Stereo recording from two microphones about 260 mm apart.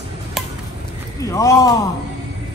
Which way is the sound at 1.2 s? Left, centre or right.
Centre.